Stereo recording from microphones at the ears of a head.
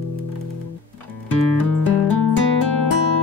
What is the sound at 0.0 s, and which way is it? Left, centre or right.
Music, left.